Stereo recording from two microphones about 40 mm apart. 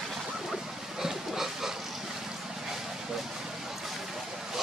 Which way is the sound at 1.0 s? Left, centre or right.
Centre.